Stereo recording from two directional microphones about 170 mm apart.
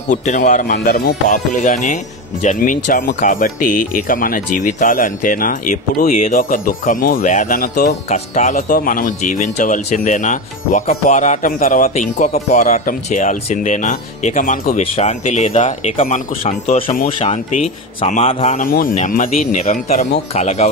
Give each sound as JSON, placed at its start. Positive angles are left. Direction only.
{"t": 0.1, "sound": "speech", "side_deg": 45}
{"t": 0.7, "sound": "speech", "side_deg": 60}
{"t": 15.0, "sound": "speech", "side_deg": 40}